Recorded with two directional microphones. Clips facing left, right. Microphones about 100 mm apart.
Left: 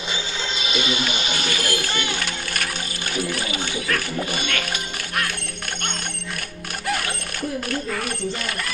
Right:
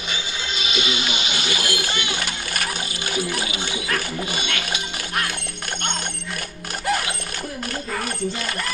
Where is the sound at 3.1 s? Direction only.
5° right (ahead or behind).